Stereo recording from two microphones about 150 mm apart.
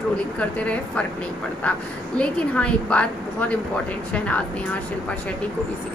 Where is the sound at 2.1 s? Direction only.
5° left (ahead or behind).